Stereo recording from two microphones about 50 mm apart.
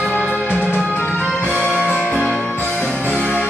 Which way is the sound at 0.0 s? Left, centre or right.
Left.